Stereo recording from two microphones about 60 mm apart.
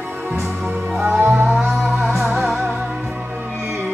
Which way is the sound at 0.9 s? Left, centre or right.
Centre.